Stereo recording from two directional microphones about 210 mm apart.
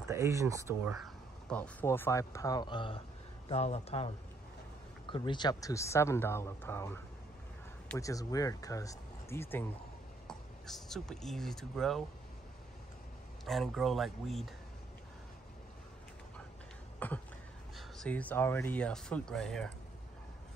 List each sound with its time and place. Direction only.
0.1 s speech: 15° right (ahead or behind)
1.5 s speech: 5° left (ahead or behind)
13.5 s speech: centre (ahead or behind)
17.0 s a sound: 5° left (ahead or behind)
17.7 s speech: 5° left (ahead or behind)